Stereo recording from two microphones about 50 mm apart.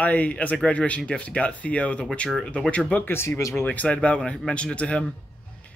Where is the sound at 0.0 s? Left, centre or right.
Left.